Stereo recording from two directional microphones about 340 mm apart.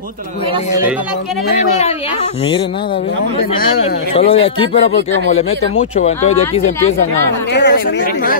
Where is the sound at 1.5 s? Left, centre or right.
Centre.